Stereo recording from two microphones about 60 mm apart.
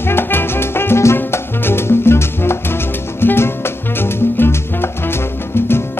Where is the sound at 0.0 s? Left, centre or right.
Left.